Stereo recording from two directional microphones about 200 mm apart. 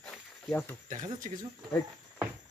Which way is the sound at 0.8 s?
40° right (ahead or behind).